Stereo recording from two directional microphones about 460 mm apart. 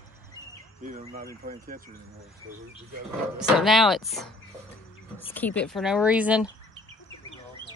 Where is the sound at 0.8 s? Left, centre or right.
Centre.